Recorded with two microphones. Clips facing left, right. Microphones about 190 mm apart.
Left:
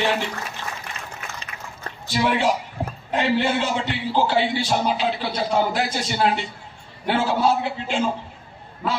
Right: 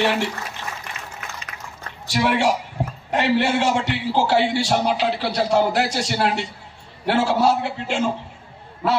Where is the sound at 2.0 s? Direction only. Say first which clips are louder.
Right 1 dB; 75° right (ahead or behind).